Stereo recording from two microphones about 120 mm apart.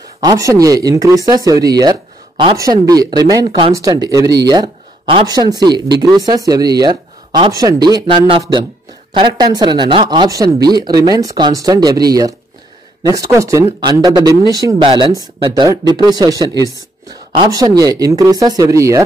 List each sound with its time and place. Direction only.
0.2 s speech: 30° right (ahead or behind)
7.5 s speech: 30° right (ahead or behind)
9.1 s speech: 40° right (ahead or behind)
14.8 s speech: 40° right (ahead or behind)